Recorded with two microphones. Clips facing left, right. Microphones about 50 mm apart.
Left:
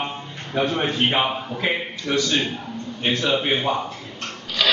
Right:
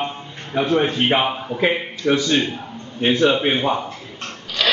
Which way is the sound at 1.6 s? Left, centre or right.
Centre.